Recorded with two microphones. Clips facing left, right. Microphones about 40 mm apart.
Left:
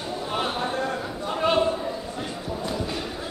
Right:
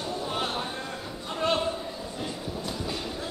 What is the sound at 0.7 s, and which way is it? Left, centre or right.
Cattle, left.